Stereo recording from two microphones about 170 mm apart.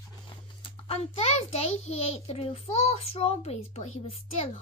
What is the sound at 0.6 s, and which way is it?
A child's voice, 35° left (ahead or behind).